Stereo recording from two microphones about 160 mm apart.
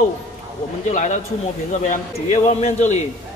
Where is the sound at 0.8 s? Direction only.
50° left (ahead or behind).